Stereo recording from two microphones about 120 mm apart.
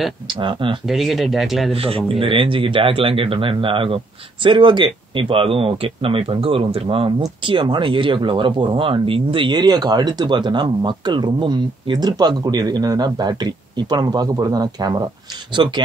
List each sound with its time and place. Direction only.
0.3 s speech: 45° right (ahead or behind)
0.8 s speech: centre (ahead or behind)
1.7 s speech: 50° right (ahead or behind)